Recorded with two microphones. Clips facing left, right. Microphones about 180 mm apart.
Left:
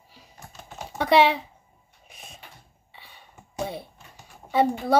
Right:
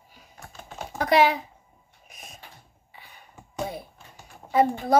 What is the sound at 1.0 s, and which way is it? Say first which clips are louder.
Speech: left 1 dB; 30° left (ahead or behind).